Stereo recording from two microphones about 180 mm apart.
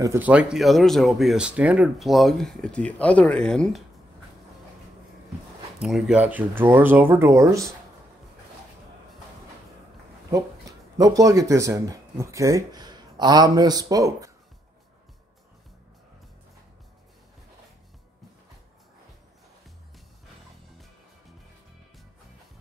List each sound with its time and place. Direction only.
0.0 s speech: 10° right (ahead or behind); by 3.8 s 5° left (ahead or behind)
5.8 s speech: centre (ahead or behind)
11.0 s speech: 20° right (ahead or behind)